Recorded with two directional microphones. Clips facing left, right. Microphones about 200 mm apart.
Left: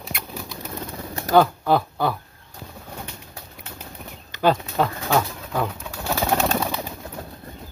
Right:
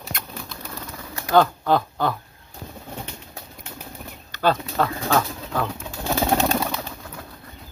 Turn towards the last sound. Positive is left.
turn(degrees=5)  # may be behind; listen again after turning